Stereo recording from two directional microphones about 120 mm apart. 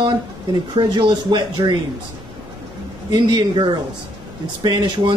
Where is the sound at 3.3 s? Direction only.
40° right (ahead or behind).